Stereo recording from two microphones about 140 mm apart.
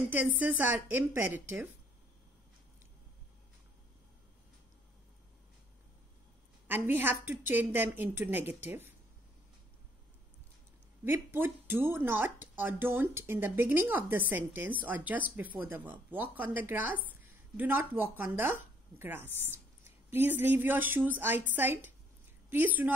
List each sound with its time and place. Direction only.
0.1 s speech: 15° right (ahead or behind)
6.7 s speech: 15° right (ahead or behind)
11.1 s speech: 15° right (ahead or behind)